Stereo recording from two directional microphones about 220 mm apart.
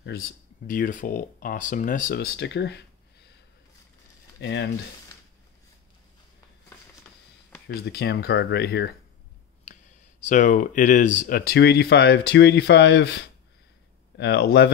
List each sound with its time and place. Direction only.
0.0 s speech: 45° left (ahead or behind)
4.4 s speech: 55° left (ahead or behind)
7.6 s speech: 50° left (ahead or behind)
10.2 s speech: 35° left (ahead or behind)